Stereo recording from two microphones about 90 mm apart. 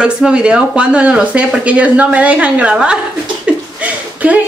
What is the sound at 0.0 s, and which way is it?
Speech, 10° right (ahead or behind).